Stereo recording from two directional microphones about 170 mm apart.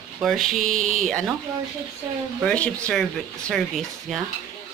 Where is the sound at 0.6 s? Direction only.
50° right (ahead or behind).